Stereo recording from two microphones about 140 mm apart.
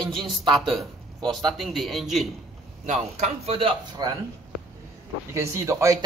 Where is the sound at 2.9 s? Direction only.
45° right (ahead or behind).